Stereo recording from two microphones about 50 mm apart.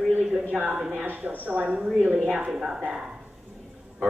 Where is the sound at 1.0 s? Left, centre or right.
Right.